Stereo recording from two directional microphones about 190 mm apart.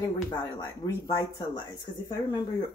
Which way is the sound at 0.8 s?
20° left (ahead or behind).